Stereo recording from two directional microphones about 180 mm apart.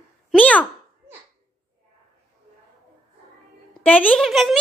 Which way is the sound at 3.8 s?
10° left (ahead or behind).